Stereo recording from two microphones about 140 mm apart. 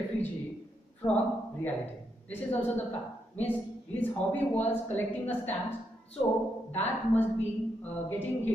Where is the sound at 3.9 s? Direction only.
10° left (ahead or behind).